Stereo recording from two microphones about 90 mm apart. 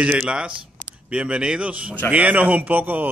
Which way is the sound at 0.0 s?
10° right (ahead or behind).